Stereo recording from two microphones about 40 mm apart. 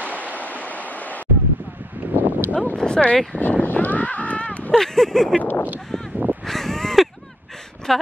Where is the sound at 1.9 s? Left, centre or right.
Right.